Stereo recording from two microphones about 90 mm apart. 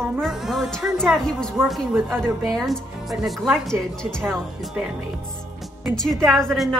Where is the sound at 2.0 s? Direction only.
25° right (ahead or behind).